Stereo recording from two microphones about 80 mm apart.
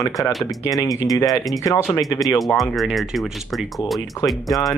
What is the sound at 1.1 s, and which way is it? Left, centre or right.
Speech, left.